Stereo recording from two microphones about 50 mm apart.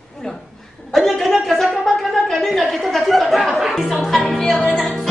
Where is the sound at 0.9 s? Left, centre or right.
Centre.